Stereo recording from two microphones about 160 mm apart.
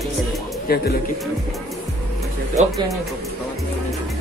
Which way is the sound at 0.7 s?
70° left (ahead or behind).